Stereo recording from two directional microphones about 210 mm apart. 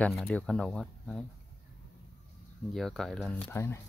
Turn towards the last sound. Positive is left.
turn(degrees=10)  # may be behind; listen again after turning